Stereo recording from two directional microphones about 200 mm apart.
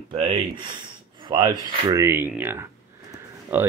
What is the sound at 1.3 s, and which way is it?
Speech, 20° right (ahead or behind).